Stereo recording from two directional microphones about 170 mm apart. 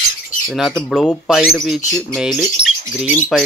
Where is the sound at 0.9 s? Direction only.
Centre (ahead or behind).